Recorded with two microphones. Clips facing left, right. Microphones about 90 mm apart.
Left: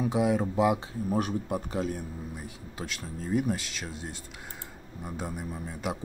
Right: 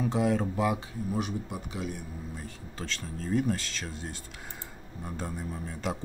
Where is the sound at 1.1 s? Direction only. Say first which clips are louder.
Left 5 dB; 45° left (ahead or behind).